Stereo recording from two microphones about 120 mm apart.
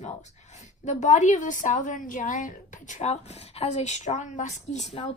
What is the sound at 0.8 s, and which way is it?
A woman's voice, 85° left.